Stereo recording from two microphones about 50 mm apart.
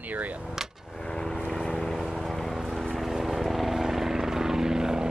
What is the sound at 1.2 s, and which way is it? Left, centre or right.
Vehicle, centre.